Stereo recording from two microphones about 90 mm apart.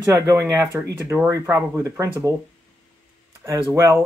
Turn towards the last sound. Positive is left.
turn(degrees=-35)  # may be behind; listen again after turning